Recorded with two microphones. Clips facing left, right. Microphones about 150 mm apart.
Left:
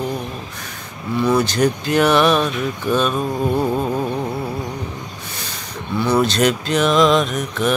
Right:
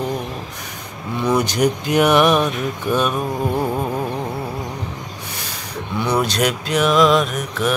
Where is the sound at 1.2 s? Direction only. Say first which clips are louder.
Left 1 dB; 15° right (ahead or behind).